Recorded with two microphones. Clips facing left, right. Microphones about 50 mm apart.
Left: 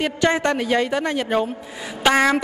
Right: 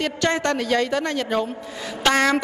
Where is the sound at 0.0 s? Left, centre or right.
Centre.